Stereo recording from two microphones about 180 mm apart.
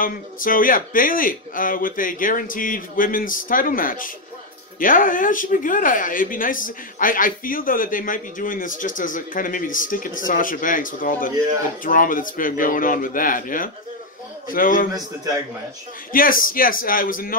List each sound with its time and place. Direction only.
0.0 s speech: 50° left (ahead or behind)
16.1 s speech: 50° left (ahead or behind)